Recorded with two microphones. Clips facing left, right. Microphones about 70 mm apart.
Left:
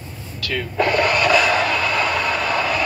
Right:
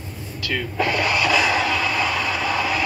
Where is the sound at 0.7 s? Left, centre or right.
Left.